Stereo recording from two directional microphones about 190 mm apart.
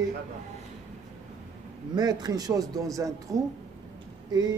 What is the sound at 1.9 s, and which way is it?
Speech, 20° right (ahead or behind).